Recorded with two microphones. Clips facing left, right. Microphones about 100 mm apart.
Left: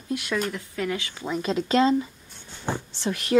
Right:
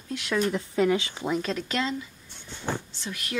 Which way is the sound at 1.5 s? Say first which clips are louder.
Left 8 dB; 30° left (ahead or behind).